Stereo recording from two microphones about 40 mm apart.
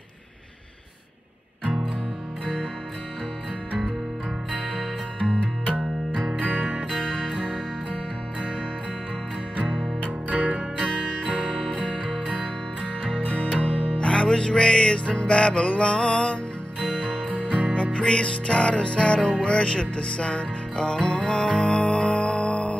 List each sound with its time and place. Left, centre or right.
5.7 s music: right
10.0 s music: right
11.7 s music: left
12.0 s music: right
13.6 s music: left
14.1 s music: centre
15.0 s music: left
16.8 s music: right
17.9 s music: left